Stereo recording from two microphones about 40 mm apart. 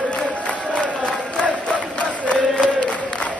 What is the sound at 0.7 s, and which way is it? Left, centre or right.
Crowd, left.